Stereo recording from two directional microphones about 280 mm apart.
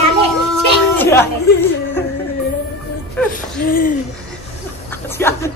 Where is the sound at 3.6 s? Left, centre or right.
Left.